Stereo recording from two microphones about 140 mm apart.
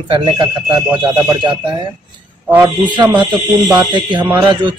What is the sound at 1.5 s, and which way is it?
Speech, 35° right (ahead or behind).